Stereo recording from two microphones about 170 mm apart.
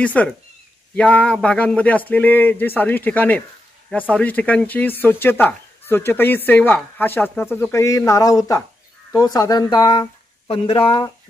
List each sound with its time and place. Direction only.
0.0 s speech: 10° left (ahead or behind); by 11.1 s 30° left (ahead or behind)